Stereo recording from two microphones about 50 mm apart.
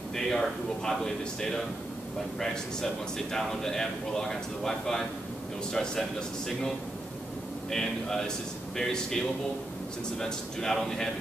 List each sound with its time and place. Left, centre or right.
0.1 s speech: centre
7.7 s speech: centre